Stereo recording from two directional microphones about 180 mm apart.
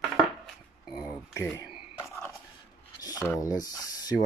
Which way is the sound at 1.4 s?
15° left (ahead or behind).